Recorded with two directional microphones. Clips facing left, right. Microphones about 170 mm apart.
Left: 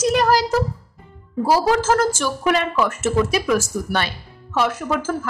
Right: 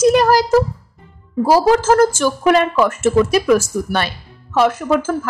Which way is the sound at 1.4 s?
50° right (ahead or behind).